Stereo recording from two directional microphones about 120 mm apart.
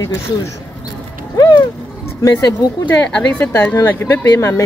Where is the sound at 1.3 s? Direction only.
30° left (ahead or behind).